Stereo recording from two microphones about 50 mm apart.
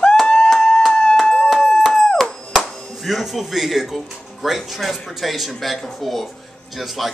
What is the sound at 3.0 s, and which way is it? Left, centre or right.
Speech, centre.